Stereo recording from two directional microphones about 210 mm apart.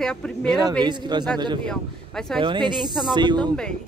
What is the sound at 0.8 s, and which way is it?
Speech, 20° right (ahead or behind).